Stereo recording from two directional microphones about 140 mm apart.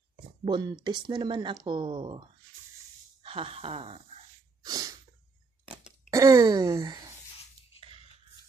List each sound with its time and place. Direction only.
0.5 s speech: 30° right (ahead or behind)
3.2 s a sound: 40° right (ahead or behind)
4.6 s sneeze: 25° right (ahead or behind)
6.0 s speech: 25° right (ahead or behind)